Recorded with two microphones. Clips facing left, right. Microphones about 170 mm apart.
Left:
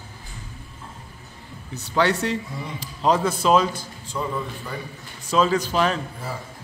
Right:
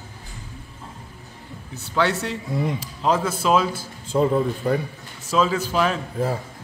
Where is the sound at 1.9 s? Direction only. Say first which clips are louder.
Left 1 dB; centre (ahead or behind).